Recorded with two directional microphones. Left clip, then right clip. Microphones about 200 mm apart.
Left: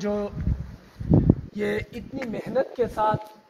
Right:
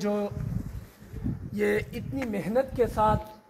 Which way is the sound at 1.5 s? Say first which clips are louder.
Right 1 dB; 10° right (ahead or behind).